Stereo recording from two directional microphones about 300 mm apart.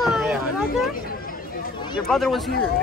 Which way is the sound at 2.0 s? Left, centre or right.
Centre.